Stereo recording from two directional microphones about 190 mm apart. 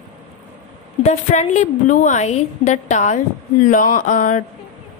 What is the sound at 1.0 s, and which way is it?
A woman's voice, 35° left (ahead or behind).